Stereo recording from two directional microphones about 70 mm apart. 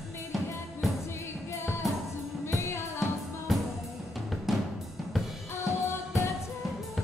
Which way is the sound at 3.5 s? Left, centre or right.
Centre.